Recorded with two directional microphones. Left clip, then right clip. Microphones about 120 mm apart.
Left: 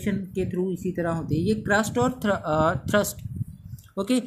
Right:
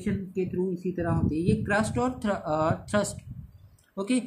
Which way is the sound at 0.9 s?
90° left.